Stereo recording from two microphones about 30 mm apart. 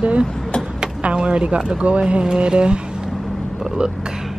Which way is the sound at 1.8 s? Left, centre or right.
Right.